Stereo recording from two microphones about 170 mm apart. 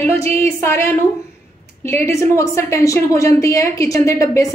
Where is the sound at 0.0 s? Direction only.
15° left (ahead or behind).